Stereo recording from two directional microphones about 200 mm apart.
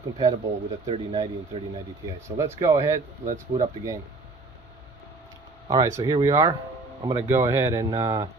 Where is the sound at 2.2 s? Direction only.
15° right (ahead or behind).